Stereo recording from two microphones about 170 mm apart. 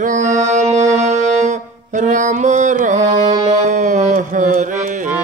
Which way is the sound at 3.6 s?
45° right (ahead or behind).